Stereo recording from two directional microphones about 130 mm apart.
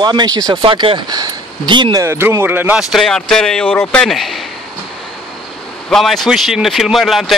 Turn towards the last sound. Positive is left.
turn(degrees=0)  # may be behind; listen again after turning